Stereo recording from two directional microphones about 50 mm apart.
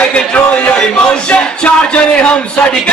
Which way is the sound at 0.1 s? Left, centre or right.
Left.